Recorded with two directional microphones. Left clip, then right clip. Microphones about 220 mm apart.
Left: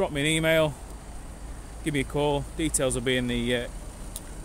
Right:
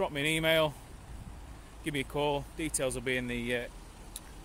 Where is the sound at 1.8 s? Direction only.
10° right (ahead or behind).